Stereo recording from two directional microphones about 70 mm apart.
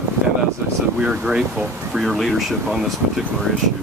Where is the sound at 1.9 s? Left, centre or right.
Centre.